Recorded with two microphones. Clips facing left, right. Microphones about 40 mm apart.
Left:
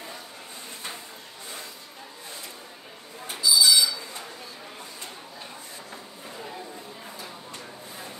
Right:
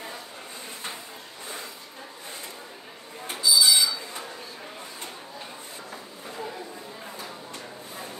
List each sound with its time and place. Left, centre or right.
3.3 s buzzer: right